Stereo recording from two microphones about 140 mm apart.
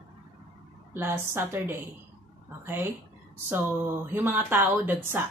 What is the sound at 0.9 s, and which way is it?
Speech, 15° right (ahead or behind).